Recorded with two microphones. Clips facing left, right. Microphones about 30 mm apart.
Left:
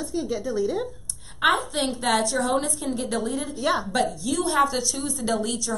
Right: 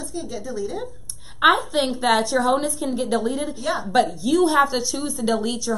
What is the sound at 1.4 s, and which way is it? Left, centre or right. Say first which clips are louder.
A woman's voice: right 4 dB; centre.